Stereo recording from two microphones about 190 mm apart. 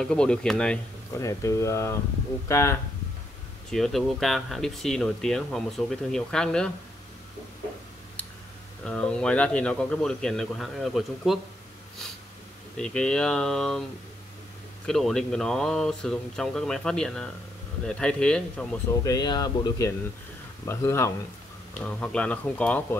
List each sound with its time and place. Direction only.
0.0 s speech: 5° left (ahead or behind)
1.1 s speech: 15° left (ahead or behind)
3.7 s speech: centre (ahead or behind)
8.8 s speech: 5° left (ahead or behind)
12.7 s speech: 5° left (ahead or behind)
14.9 s speech: centre (ahead or behind)
19.0 s speech: 20° left (ahead or behind)